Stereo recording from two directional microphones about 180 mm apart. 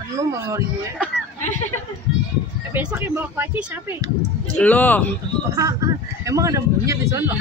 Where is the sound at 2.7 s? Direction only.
10° right (ahead or behind).